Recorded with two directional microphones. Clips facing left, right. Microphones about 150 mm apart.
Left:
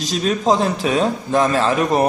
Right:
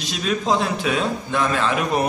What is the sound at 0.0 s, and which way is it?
A man's voice, 40° left (ahead or behind).